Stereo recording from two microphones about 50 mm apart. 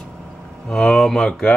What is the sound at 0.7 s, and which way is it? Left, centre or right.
Speech, centre.